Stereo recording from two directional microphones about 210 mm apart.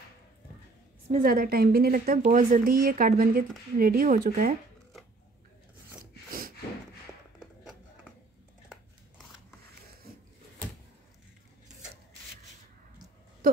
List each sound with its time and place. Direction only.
1.1 s a woman's voice: 45° right (ahead or behind)
7.3 s music: 5° right (ahead or behind)